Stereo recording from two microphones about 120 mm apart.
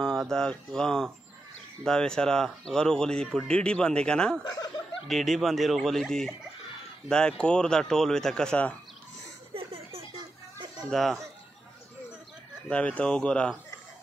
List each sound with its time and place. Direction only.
0.0 s speech: 5° left (ahead or behind)
9.5 s a sound: 55° right (ahead or behind)
10.9 s speech: centre (ahead or behind)
12.6 s speech: 10° left (ahead or behind)